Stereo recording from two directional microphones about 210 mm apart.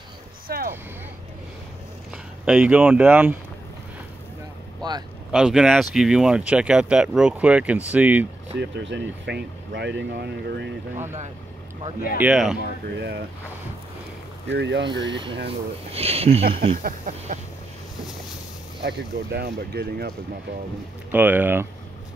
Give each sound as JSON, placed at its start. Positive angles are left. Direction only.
{"t": 0.5, "sound": "vehicle", "side_deg": -45}
{"t": 2.4, "sound": "speech", "side_deg": -5}
{"t": 4.8, "sound": "vehicle", "side_deg": -20}
{"t": 5.3, "sound": "speech", "side_deg": -5}
{"t": 8.5, "sound": "speech", "side_deg": -55}
{"t": 12.2, "sound": "speech", "side_deg": -5}
{"t": 14.5, "sound": "speech", "side_deg": -55}
{"t": 14.9, "sound": "speech", "side_deg": -20}
{"t": 16.8, "sound": "a sound", "side_deg": -40}
{"t": 18.9, "sound": "speech", "side_deg": -50}
{"t": 21.1, "sound": "speech", "side_deg": -10}